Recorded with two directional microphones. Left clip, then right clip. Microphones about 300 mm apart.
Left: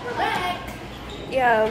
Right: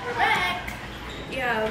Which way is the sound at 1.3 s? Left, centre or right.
Centre.